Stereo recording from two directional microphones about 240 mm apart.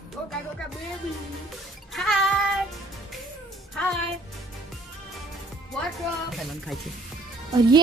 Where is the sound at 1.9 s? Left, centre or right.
Centre.